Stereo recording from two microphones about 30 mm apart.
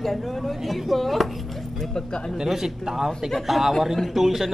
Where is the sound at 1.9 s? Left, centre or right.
Left.